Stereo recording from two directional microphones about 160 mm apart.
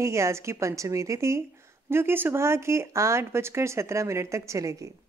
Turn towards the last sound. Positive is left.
turn(degrees=-20)  # may be behind; listen again after turning